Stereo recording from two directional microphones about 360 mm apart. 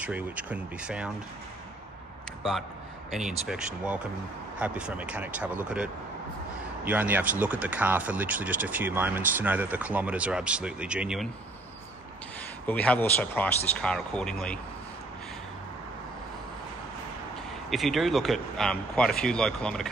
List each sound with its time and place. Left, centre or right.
0.0 s speech: centre
3.1 s speech: centre
12.6 s speech: centre
17.6 s speech: centre